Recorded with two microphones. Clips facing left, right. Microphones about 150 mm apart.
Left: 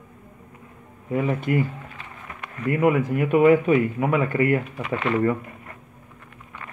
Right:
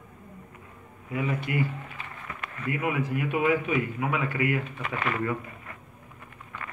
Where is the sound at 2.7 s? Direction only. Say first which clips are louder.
Left 8 dB; 45° left (ahead or behind).